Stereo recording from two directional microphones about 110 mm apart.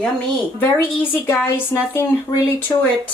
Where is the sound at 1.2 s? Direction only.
20° left (ahead or behind).